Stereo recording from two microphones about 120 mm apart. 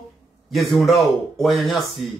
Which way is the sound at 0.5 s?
Centre (ahead or behind).